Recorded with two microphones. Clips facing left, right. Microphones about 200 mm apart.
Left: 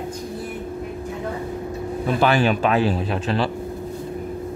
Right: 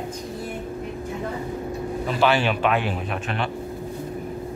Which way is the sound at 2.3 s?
40° left (ahead or behind).